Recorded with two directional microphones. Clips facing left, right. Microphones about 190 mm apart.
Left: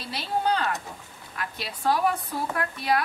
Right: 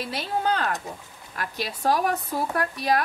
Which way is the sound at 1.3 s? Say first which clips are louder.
Right 4 dB; 40° right (ahead or behind).